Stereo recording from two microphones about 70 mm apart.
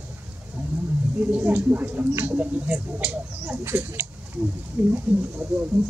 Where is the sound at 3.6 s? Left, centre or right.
Right.